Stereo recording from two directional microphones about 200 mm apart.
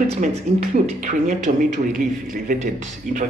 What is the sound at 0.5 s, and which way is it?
Speech, 35° right (ahead or behind).